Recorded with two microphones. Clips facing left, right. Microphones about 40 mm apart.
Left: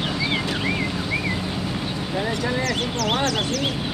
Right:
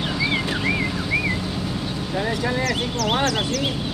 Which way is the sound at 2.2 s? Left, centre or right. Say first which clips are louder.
Right 1 dB; centre.